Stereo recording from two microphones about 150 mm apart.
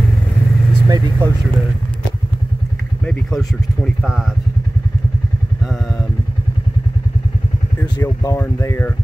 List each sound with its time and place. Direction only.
0.8 s speech: 25° right (ahead or behind)
3.1 s speech: 5° left (ahead or behind)
7.8 s speech: 25° left (ahead or behind)